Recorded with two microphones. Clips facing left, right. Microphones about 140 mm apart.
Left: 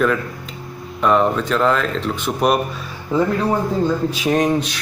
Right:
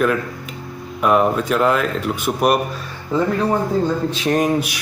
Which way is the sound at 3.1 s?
15° left (ahead or behind).